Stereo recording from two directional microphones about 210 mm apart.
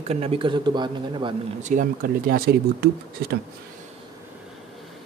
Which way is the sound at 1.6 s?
40° right (ahead or behind).